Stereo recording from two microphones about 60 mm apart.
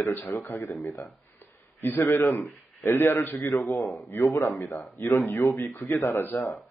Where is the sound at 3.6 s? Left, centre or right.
Left.